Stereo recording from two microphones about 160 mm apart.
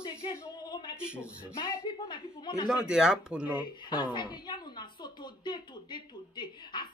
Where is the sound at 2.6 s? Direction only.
5° right (ahead or behind).